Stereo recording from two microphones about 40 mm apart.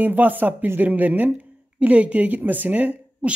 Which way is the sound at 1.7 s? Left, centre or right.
Right.